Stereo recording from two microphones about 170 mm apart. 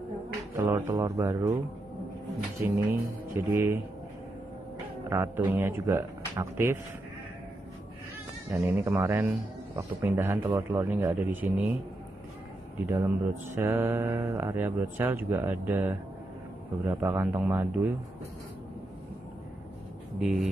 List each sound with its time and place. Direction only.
0.7 s mantra: 15° right (ahead or behind)
2.6 s mantra: 15° right (ahead or behind)
5.1 s mantra: 15° right (ahead or behind)
8.5 s mantra: 10° right (ahead or behind)
12.9 s mantra: 15° right (ahead or behind)
20.2 s speech: centre (ahead or behind)